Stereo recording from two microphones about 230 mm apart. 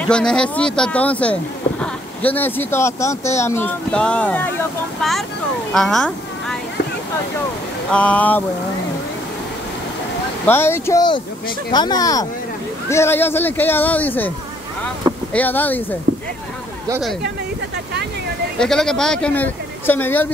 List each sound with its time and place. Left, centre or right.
0.1 s speech: centre
5.7 s a sound: centre
7.9 s speech: centre
10.4 s speech: centre
15.3 s speech: centre
18.6 s speech: centre